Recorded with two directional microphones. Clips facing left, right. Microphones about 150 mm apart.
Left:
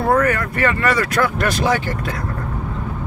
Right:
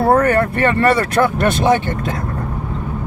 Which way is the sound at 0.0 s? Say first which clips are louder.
Right 4 dB; 30° right (ahead or behind).